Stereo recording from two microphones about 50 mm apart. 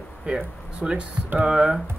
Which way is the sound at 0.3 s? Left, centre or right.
Centre.